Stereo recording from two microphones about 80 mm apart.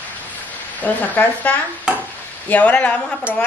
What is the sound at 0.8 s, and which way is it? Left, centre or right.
Speech, left.